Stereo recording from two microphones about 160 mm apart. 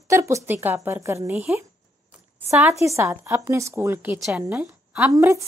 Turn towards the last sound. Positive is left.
turn(degrees=-20)  # may be behind; listen again after turning